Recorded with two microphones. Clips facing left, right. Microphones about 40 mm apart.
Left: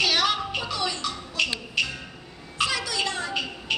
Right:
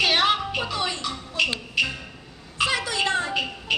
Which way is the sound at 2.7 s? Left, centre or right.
Right.